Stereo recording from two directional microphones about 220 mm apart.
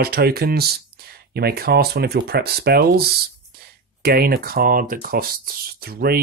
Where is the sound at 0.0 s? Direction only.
45° right (ahead or behind).